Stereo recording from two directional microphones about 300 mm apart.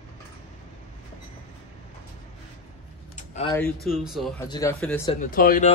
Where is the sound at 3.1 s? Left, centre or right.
Left.